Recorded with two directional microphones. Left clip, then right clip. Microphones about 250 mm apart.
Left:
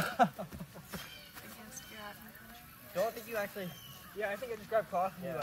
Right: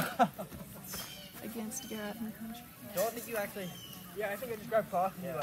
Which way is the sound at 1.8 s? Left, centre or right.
Right.